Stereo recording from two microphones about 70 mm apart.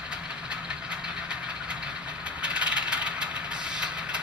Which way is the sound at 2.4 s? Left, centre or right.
Centre.